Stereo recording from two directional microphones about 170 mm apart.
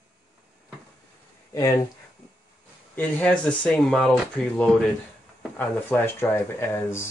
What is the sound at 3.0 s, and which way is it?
Speech, 5° left (ahead or behind).